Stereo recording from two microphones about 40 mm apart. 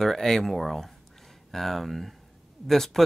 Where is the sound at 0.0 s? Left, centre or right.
Centre.